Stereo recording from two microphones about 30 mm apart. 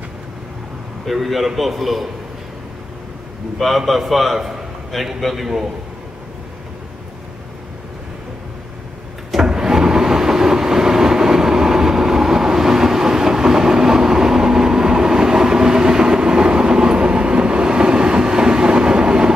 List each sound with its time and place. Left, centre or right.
1.0 s a man's voice: centre
3.5 s a man's voice: centre
9.5 s train: centre